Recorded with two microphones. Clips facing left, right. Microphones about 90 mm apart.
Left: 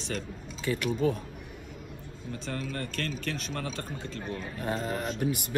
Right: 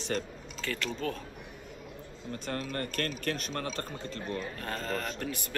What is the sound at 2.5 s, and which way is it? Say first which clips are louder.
A man's voice: even; 50° right (ahead or behind).